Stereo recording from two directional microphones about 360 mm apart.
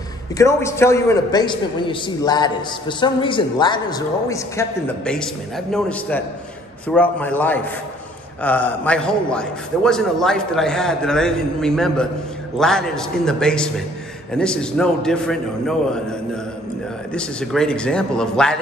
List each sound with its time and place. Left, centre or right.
0.4 s a man's voice: centre